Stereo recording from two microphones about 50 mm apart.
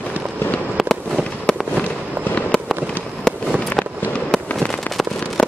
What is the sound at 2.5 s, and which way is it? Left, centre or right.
Fireworks, centre.